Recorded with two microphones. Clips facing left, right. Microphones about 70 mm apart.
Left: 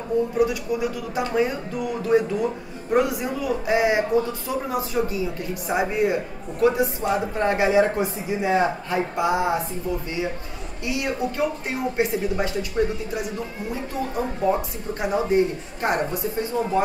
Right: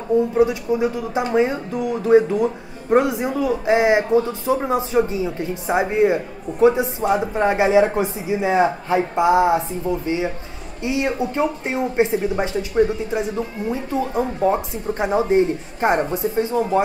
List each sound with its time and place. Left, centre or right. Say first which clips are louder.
0.4 s speech: right 4 dB; right